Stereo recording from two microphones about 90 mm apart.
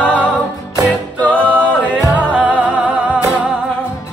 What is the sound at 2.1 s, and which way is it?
Music, 15° right (ahead or behind).